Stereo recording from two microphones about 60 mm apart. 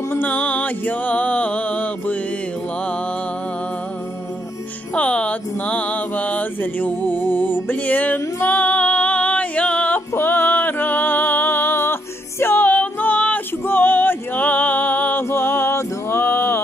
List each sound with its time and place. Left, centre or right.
0.1 s music: left
4.9 s mantra: centre
8.4 s female singing: left
10.1 s music: left
15.2 s music: left